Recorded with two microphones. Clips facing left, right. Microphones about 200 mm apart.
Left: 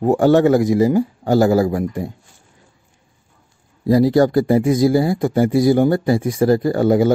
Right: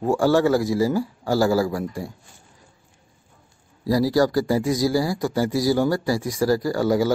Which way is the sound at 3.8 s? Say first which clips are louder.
Left 6 dB; 20° left (ahead or behind).